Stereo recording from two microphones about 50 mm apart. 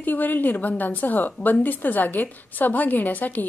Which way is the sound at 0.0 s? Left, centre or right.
Left.